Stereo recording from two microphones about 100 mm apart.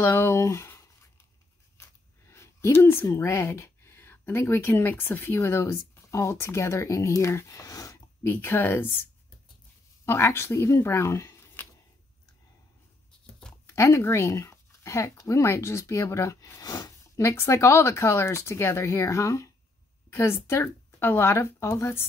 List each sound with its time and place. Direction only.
0.0 s speech: 25° left (ahead or behind)
2.3 s speech: 25° left (ahead or behind)
10.0 s speech: 25° left (ahead or behind)
13.7 s speech: 30° left (ahead or behind)